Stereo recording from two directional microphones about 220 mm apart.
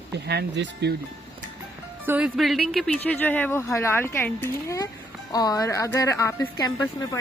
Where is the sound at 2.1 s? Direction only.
Centre (ahead or behind).